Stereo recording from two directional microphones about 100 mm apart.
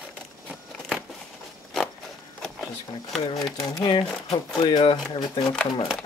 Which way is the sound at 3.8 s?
50° left (ahead or behind).